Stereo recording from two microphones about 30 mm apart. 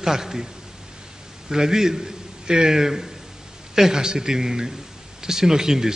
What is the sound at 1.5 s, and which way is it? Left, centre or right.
A man's voice, centre.